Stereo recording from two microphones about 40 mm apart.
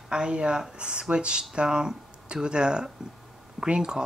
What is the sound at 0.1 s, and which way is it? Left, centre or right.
Speech, right.